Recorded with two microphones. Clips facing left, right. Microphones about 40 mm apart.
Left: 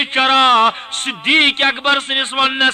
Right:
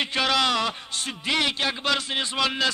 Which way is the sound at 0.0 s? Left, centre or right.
Left.